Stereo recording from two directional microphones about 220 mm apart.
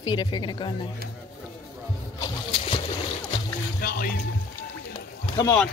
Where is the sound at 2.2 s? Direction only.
25° left (ahead or behind).